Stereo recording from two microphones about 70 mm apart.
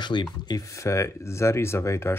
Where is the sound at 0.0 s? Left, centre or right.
Left.